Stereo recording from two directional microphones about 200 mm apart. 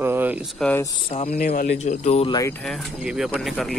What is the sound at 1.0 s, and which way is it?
Speech, 30° left (ahead or behind).